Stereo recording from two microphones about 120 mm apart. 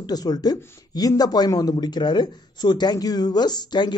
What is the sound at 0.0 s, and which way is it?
Speech, 35° left (ahead or behind).